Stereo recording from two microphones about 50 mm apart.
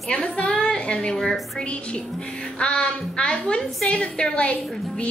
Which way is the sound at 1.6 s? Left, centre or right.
Left.